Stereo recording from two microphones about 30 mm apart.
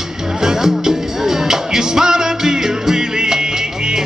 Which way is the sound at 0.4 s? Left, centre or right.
Centre.